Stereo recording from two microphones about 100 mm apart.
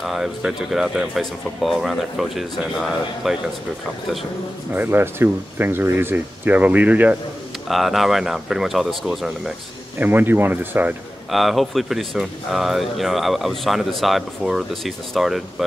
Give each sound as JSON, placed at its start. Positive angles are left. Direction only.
{"t": 0.0, "sound": "speech", "side_deg": -5}
{"t": 4.7, "sound": "speech", "side_deg": -20}
{"t": 7.6, "sound": "speech", "side_deg": 0}
{"t": 9.9, "sound": "speech", "side_deg": -20}
{"t": 11.2, "sound": "speech", "side_deg": 0}